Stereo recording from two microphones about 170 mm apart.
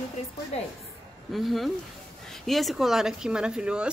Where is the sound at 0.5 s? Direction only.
40° left (ahead or behind).